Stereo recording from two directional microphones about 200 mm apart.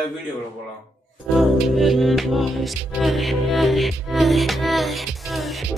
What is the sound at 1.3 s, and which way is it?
Music, centre (ahead or behind).